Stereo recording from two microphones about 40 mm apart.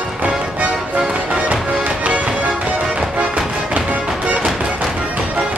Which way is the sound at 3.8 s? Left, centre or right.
Right.